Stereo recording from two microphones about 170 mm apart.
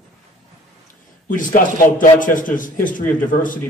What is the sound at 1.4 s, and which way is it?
A man's voice, 55° left (ahead or behind).